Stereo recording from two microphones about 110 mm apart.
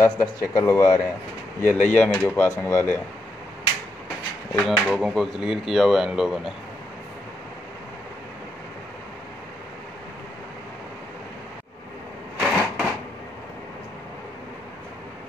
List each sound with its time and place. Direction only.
0.0 s speech: 30° left (ahead or behind)
1.6 s speech: 15° left (ahead or behind)
4.6 s speech: 5° left (ahead or behind)
12.4 s a sound: centre (ahead or behind)